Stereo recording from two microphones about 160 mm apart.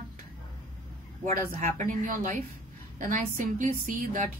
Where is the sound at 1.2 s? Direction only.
50° right (ahead or behind).